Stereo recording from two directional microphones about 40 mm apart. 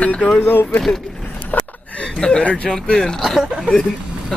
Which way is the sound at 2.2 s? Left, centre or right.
Left.